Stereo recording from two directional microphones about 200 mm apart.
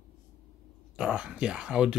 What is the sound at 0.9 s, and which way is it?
Speech, 5° right (ahead or behind).